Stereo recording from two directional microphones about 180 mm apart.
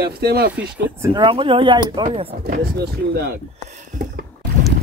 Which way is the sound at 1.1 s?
30° right (ahead or behind).